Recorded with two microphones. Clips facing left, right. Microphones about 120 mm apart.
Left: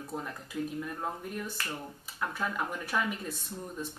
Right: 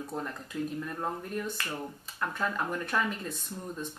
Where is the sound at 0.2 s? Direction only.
5° left (ahead or behind).